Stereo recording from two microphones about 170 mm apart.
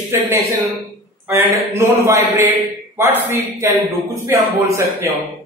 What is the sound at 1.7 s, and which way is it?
A man's voice, 15° right (ahead or behind).